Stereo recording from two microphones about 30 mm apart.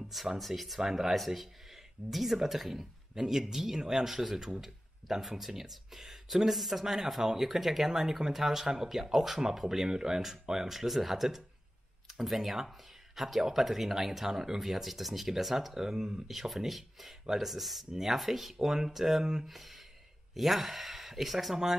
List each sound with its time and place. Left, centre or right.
0.4 s speech: centre
0.7 s speech: centre
1.1 s speech: centre
4.6 s a sound: centre
5.4 s speech: centre
10.7 s speech: centre
15.7 s speech: centre
16.3 s speech: centre